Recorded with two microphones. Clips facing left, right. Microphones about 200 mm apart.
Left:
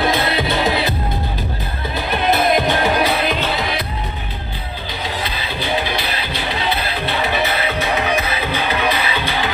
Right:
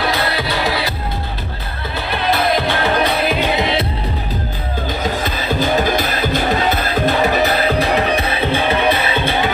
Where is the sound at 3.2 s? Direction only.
5° right (ahead or behind).